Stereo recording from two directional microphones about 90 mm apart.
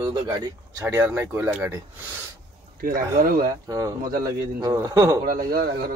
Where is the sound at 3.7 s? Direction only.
40° right (ahead or behind).